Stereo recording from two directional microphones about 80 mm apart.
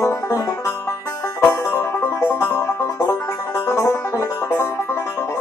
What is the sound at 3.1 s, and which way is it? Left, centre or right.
Music, left.